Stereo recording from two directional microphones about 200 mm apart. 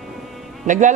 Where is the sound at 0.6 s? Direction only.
40° right (ahead or behind).